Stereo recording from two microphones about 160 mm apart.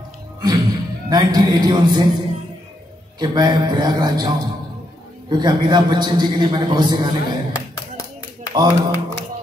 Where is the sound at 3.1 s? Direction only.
25° right (ahead or behind).